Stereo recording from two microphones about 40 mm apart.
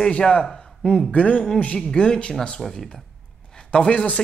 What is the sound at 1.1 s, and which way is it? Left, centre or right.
A woman's voice, left.